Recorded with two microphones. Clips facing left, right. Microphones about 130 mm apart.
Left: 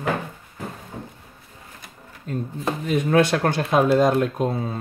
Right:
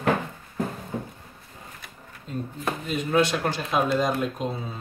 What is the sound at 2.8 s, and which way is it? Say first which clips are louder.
Speech: left 5 dB; 60° left (ahead or behind).